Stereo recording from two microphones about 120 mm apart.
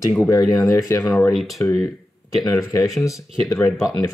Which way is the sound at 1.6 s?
25° left (ahead or behind).